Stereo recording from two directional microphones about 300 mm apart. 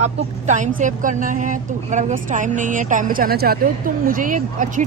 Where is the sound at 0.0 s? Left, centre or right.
Right.